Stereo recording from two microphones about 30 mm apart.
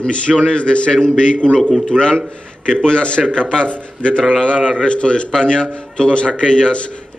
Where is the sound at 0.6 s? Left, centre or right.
Left.